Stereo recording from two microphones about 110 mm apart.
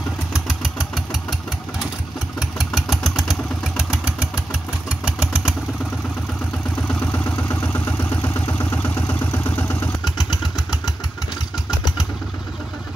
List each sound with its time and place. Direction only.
0.3 s vehicle: 5° right (ahead or behind)
2.6 s vehicle: centre (ahead or behind)
4.8 s engine: 10° right (ahead or behind)
7.1 s vehicle: 15° left (ahead or behind)
10.0 s motorcycle: 40° left (ahead or behind)